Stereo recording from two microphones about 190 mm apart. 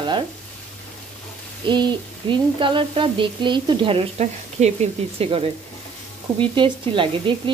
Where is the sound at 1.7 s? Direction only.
25° right (ahead or behind).